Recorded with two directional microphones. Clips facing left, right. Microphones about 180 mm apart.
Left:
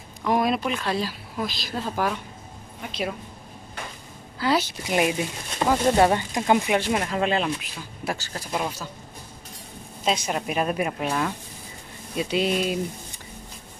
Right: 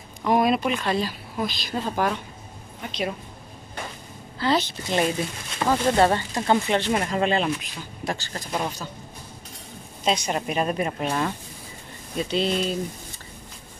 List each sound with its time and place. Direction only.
0.2 s a woman's voice: centre (ahead or behind)
4.4 s speech: 10° left (ahead or behind)
10.0 s a woman's voice: 5° left (ahead or behind)